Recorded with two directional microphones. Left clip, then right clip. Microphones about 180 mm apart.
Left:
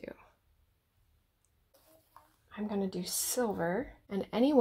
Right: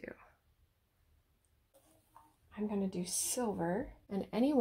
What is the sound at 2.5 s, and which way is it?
Speech, 30° left (ahead or behind).